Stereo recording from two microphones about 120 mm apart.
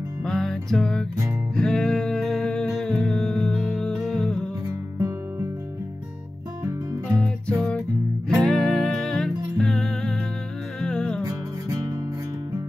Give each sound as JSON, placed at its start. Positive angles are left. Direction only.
{"t": 0.2, "sound": "music", "side_deg": 5}
{"t": 4.6, "sound": "music", "side_deg": -25}
{"t": 7.2, "sound": "music", "side_deg": 5}
{"t": 11.2, "sound": "music", "side_deg": -25}